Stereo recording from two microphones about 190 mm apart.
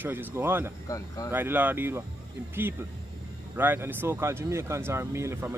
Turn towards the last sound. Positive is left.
turn(degrees=-15)  # may be behind; listen again after turning